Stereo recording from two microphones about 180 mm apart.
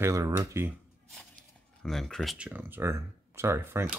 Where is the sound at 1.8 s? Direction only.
Centre (ahead or behind); by 3.9 s 15° right (ahead or behind).